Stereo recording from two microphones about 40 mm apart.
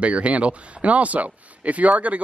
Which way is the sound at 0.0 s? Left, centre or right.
Right.